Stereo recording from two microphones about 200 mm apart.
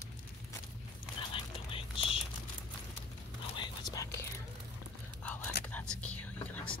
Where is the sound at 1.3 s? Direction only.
25° left (ahead or behind).